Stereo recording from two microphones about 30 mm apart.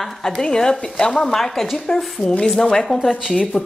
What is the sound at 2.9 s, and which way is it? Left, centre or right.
Speech, left.